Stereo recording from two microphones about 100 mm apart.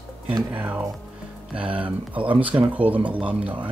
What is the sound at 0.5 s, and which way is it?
Speech, 15° right (ahead or behind).